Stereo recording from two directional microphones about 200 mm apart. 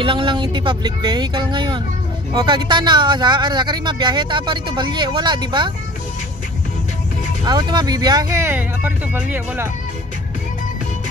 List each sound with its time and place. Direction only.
0.0 s speech: 25° right (ahead or behind)
7.4 s speech: 20° right (ahead or behind)